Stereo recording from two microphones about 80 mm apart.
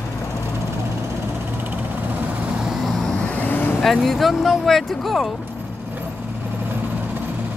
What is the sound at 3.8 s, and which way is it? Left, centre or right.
Speech, centre.